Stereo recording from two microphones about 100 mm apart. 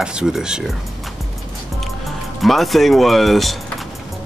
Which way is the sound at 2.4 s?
Centre (ahead or behind).